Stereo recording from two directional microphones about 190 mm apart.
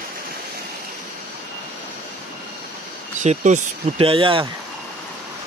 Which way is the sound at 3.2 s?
40° right (ahead or behind).